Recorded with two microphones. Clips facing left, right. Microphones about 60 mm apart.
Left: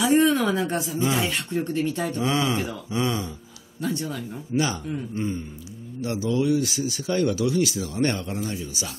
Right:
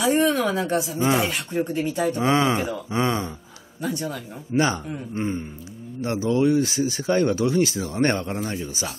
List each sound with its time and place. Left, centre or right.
0.2 s speech: centre
0.9 s speech: right
1.3 s speech: centre
2.2 s speech: right
3.8 s speech: centre
4.5 s speech: right